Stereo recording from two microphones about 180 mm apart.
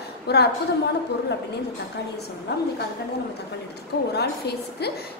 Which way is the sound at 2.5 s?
65° left (ahead or behind).